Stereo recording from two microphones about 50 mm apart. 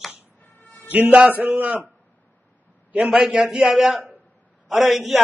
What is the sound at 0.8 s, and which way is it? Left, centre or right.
A man's voice, right.